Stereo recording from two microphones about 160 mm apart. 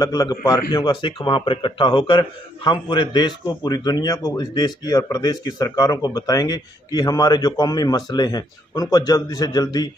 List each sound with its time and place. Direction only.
0.0 s speech: 25° left (ahead or behind)